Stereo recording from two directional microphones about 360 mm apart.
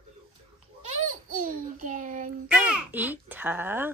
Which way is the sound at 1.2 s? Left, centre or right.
Right.